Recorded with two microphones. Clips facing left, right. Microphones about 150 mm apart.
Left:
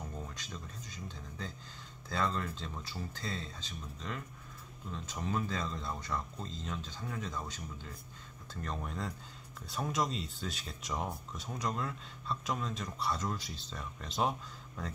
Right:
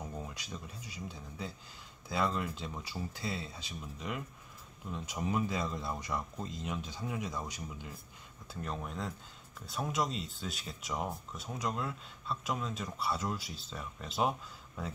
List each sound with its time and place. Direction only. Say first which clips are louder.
0.0 s speech: right 2 dB; 10° right (ahead or behind)
8.6 s speech: even; centre (ahead or behind)